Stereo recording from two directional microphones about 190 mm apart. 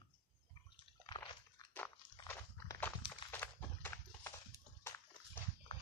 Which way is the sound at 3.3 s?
10° left (ahead or behind).